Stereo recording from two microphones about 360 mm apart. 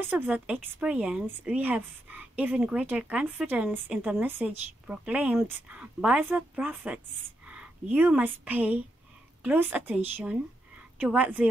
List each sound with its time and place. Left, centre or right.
0.0 s speech: centre